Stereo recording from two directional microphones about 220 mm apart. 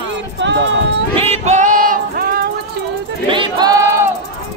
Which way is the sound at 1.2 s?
30° right (ahead or behind).